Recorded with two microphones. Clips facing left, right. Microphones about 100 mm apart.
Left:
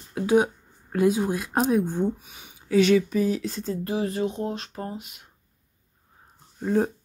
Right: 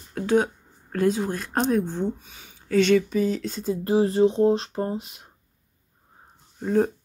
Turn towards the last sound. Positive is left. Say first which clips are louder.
# right 2 dB
turn(degrees=5)  # may be behind; listen again after turning